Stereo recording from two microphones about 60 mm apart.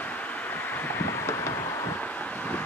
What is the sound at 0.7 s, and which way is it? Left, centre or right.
Vehicle, left.